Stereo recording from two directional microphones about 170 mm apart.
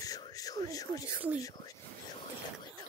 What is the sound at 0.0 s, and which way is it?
Whispering, 20° left (ahead or behind).